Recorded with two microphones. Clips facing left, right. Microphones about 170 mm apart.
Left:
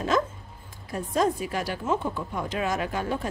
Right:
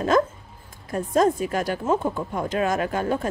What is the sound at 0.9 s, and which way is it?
Speech, 45° right (ahead or behind).